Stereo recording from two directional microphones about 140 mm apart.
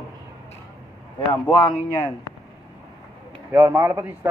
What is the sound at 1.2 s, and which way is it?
Speech, 40° left (ahead or behind).